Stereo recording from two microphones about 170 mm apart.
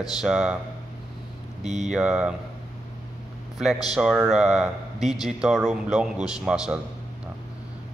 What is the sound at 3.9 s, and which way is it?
A man's voice, centre (ahead or behind).